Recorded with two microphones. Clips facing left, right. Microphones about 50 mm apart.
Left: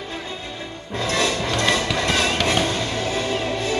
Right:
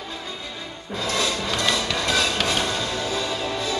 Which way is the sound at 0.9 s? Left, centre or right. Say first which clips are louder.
Left 3 dB; left.